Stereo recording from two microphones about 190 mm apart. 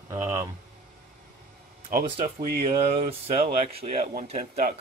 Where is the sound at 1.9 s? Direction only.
45° right (ahead or behind).